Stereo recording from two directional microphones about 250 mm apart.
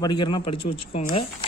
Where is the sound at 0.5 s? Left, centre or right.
Left.